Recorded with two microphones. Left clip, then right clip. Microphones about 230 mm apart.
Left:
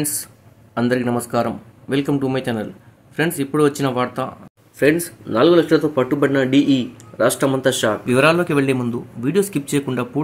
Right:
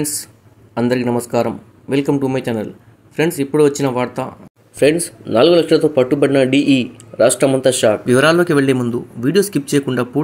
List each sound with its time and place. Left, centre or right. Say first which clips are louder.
0.0 s a man's voice: right 3 dB; centre
7.9 s speech: right 3 dB; centre